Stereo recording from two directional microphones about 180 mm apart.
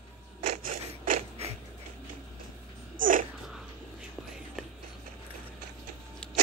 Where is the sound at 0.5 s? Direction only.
50° right (ahead or behind).